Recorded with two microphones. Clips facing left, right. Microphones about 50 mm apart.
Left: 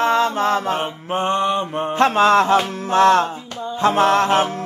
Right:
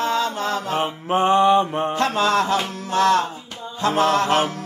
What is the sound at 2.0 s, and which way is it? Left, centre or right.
Mantra, left.